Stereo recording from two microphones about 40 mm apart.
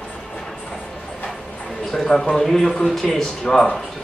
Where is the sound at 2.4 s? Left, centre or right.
Centre.